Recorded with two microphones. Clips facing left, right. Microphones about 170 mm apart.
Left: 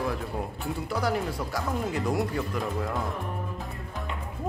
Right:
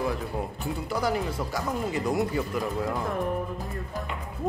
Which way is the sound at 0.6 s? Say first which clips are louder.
Even; centre (ahead or behind).